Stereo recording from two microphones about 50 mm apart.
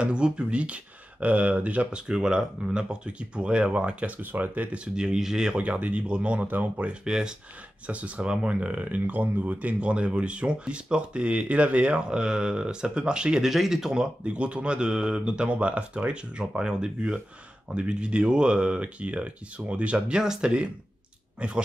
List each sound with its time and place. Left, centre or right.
0.0 s speech: right
4.2 s speech: right
4.7 s speech: centre
5.6 s speech: right
6.4 s speech: right
6.9 s speech: centre
7.8 s speech: right
13.5 s speech: centre
14.2 s speech: right
20.2 s speech: centre